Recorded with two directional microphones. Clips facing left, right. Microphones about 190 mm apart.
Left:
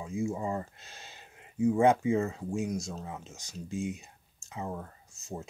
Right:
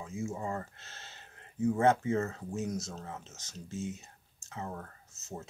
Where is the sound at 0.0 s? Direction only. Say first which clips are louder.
Left 4 dB; 15° left (ahead or behind).